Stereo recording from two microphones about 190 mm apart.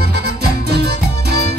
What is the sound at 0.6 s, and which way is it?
Music, 60° right (ahead or behind).